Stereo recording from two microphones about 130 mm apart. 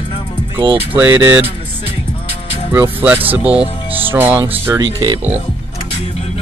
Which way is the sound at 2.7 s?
15° right (ahead or behind).